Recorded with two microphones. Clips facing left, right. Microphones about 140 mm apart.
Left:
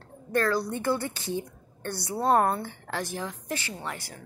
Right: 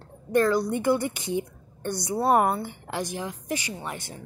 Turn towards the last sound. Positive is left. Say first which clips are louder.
# right 2 dB
turn(degrees=-20)  # may be behind; listen again after turning